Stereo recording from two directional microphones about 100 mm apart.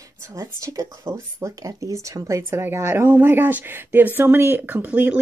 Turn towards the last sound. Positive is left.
turn(degrees=-15)  # may be behind; listen again after turning